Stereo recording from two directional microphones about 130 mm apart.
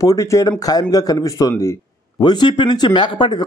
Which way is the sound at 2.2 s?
35° left (ahead or behind).